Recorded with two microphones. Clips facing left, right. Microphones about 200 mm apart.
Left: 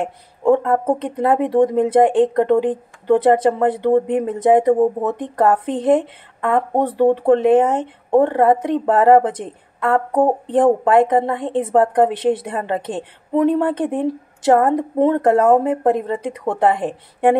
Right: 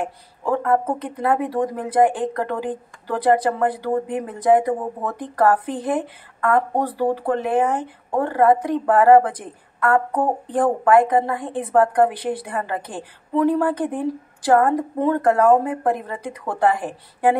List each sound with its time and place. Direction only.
0.0 s a woman's voice: 25° left (ahead or behind)